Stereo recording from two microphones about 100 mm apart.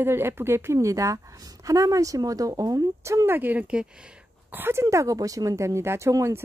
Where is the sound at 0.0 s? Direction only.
25° right (ahead or behind).